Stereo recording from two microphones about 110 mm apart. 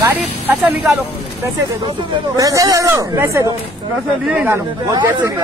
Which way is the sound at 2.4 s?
30° right (ahead or behind).